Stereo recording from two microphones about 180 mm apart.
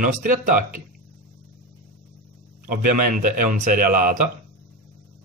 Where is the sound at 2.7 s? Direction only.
50° right (ahead or behind).